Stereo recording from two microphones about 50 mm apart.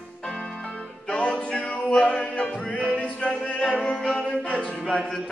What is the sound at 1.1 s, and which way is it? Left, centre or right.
Music, left.